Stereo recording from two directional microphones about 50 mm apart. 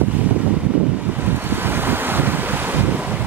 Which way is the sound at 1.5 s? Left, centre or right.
Right.